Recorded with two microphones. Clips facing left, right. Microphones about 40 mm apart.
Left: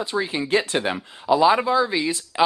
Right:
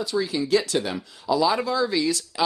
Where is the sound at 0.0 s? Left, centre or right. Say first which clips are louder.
Even; left.